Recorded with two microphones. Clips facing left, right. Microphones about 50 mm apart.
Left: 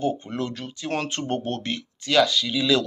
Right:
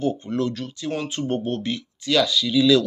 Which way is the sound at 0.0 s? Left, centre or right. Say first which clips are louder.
Right 3 dB; left.